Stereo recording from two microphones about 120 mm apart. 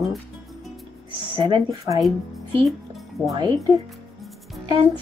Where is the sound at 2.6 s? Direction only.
Centre (ahead or behind).